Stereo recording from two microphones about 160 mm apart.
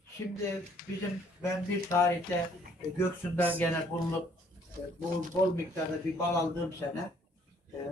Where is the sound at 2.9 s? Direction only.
10° left (ahead or behind).